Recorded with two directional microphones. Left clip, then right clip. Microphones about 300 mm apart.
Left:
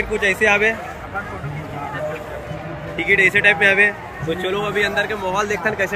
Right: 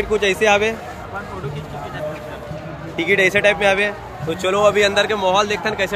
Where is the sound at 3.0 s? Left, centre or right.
Centre.